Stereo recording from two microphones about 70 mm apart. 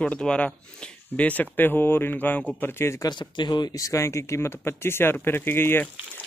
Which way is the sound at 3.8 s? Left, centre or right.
Left.